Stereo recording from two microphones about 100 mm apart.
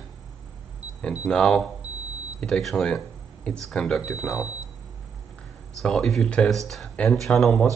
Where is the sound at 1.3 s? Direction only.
10° left (ahead or behind).